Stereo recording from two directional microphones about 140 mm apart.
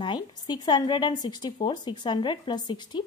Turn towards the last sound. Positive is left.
turn(degrees=35)  # may be behind; listen again after turning